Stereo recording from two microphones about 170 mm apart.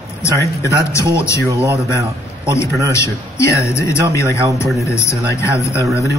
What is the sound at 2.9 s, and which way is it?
A man's voice, 15° left (ahead or behind).